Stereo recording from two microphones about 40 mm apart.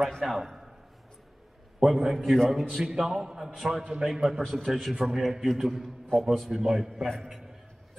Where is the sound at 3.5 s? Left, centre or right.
Centre.